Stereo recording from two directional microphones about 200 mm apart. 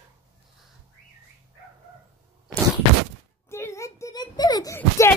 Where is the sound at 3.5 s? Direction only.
15° left (ahead or behind).